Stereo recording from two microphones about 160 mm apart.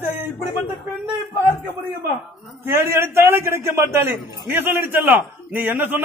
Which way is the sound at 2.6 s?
15° right (ahead or behind).